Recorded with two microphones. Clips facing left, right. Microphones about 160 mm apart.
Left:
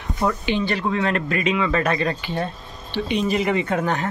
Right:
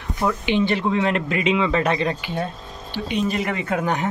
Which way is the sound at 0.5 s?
20° right (ahead or behind).